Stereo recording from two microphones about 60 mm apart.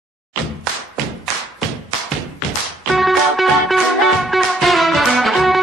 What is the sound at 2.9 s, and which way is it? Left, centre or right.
Music, centre.